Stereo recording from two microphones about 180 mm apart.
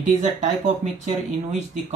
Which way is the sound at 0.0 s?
40° right (ahead or behind).